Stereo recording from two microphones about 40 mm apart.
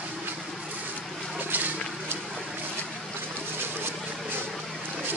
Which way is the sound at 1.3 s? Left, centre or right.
Right.